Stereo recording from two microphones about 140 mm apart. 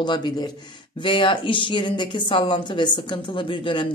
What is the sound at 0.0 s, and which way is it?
Speech, 30° left (ahead or behind).